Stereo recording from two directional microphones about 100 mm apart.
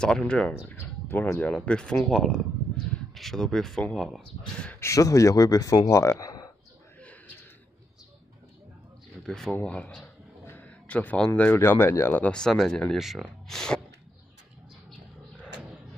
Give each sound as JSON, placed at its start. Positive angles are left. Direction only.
{"t": 0.0, "sound": "speech", "side_deg": 10}
{"t": 4.7, "sound": "speech", "side_deg": 30}
{"t": 7.0, "sound": "a sound", "side_deg": 15}
{"t": 9.2, "sound": "speech", "side_deg": 5}
{"t": 10.4, "sound": "a sound", "side_deg": 20}
{"t": 11.2, "sound": "speech", "side_deg": 15}